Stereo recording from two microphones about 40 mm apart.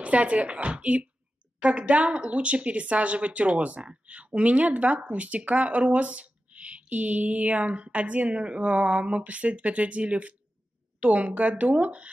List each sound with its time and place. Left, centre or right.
0.0 s speech: right